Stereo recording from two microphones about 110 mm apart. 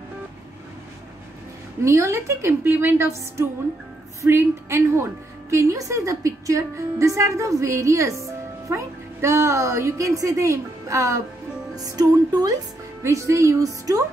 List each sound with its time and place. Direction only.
1.8 s a woman's voice: 25° right (ahead or behind)